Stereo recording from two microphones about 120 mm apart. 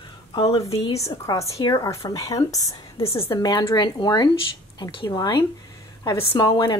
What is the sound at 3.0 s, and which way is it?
Speech, 50° left (ahead or behind).